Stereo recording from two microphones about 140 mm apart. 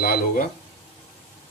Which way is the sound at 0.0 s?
90° left.